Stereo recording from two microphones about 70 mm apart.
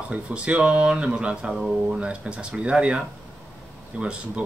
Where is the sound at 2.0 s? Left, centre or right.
Centre.